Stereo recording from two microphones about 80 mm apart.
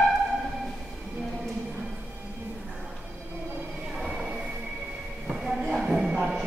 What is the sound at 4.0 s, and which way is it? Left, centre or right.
Train, centre.